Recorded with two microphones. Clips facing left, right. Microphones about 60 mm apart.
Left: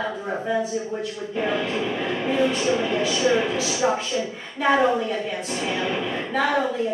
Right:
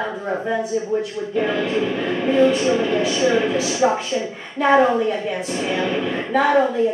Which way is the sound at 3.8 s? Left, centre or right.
Right.